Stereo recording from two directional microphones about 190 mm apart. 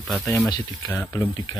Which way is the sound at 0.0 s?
Centre (ahead or behind).